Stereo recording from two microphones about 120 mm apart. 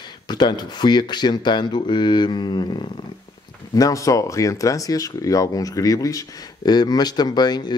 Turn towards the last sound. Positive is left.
turn(degrees=35)  # may be behind; listen again after turning